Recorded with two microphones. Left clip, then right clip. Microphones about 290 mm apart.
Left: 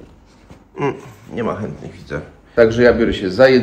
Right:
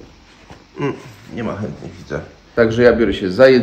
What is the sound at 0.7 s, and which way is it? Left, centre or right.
Speech, centre.